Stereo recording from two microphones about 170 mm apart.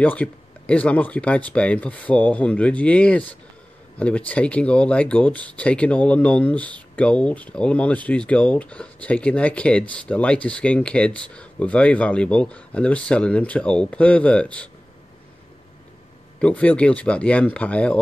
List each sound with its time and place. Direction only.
0.0 s speech: 10° left (ahead or behind)
16.3 s speech: 5° left (ahead or behind)